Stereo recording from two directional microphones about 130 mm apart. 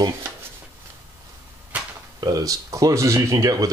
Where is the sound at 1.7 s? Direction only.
10° right (ahead or behind).